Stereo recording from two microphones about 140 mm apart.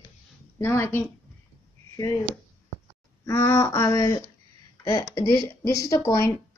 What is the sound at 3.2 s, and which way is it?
Speech, 20° left (ahead or behind).